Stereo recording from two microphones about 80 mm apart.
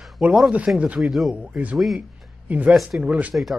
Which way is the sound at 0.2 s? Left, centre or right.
Centre.